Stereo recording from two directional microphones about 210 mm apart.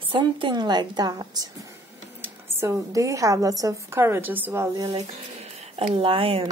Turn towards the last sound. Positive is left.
turn(degrees=-25)  # may be behind; listen again after turning